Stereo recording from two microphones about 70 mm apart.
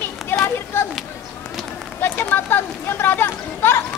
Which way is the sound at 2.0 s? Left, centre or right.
Left.